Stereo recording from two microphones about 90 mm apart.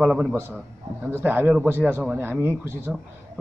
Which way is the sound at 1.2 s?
20° right (ahead or behind).